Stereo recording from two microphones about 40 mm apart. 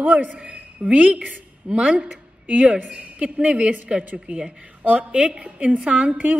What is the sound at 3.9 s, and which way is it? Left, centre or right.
Speech, right.